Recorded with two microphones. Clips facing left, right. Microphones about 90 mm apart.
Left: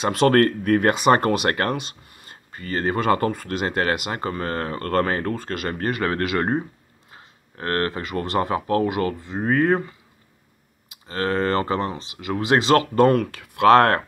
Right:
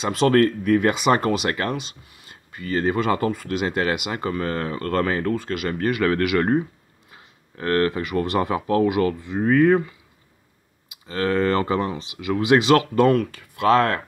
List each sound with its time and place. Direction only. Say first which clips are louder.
0.0 s speech: left 1 dB; 55° left (ahead or behind); by 9.8 s 30° left (ahead or behind)
11.1 s speech: right 1 dB; 35° left (ahead or behind); by 13.4 s 50° left (ahead or behind)
13.4 s speech: left 8 dB; 75° left (ahead or behind)